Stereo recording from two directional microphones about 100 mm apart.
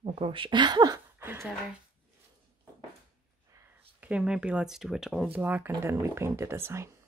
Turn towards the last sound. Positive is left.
turn(degrees=-25)  # may be behind; listen again after turning